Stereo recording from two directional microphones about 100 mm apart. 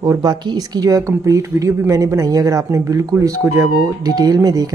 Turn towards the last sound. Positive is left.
turn(degrees=-40)  # may be behind; listen again after turning